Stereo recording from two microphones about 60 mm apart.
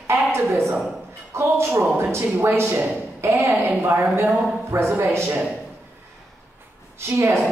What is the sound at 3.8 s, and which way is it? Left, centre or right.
Speech, right.